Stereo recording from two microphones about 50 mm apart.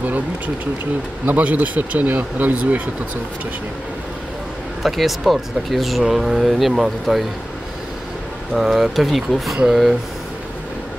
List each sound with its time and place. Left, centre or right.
1.2 s speech: right
4.8 s speech: centre
8.5 s speech: centre